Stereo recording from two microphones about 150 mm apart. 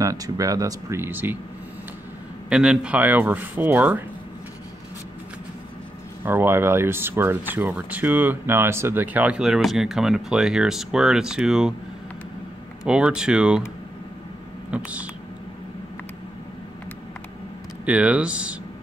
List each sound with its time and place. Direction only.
0.0 s speech: 20° right (ahead or behind)
2.5 s speech: 5° right (ahead or behind)
6.2 s speech: 15° right (ahead or behind)
12.8 s speech: 5° right (ahead or behind)
14.7 s speech: 10° right (ahead or behind)
17.8 s speech: 10° right (ahead or behind)